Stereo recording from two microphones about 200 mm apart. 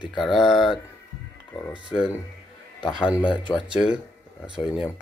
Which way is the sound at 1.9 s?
5° right (ahead or behind).